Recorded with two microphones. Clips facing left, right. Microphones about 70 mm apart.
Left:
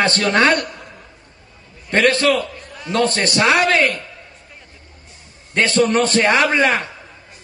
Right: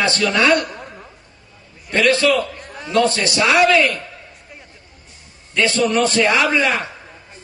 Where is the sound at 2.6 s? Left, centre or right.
Right.